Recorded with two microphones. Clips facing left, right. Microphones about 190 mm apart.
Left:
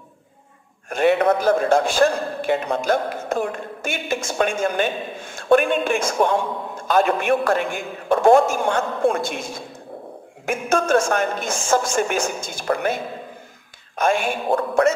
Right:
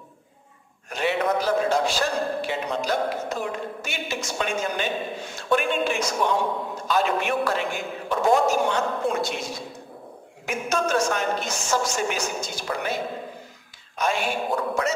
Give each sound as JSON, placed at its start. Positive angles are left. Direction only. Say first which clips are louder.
{"t": 0.8, "sound": "a man's voice", "louder": "left 7 dB", "side_deg": 50}